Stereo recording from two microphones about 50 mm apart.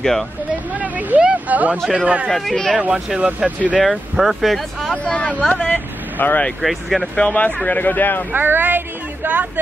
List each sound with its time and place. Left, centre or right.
0.0 s speech: centre
0.7 s speech: right
2.2 s speech: centre
3.2 s speech: right
3.8 s speech: centre
4.9 s speech: left
5.7 s vehicle: left
6.6 s speech: centre
7.2 s speech: left
8.3 s speech: right